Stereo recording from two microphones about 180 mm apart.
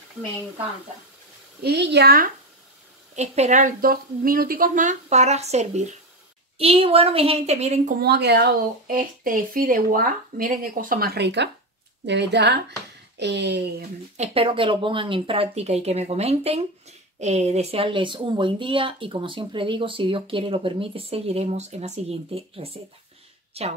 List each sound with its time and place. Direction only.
1.6 s a woman's voice: 65° right (ahead or behind)
3.2 s speech: 40° right (ahead or behind)
8.0 s speech: 65° right (ahead or behind)
14.1 s speech: 35° right (ahead or behind)